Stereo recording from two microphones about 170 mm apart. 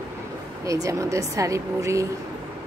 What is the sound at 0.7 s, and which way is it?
Speech, 20° right (ahead or behind).